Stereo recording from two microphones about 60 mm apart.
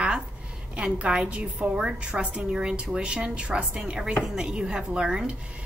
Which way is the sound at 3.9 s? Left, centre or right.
Centre.